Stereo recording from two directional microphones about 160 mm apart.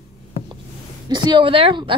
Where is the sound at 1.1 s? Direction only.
30° right (ahead or behind).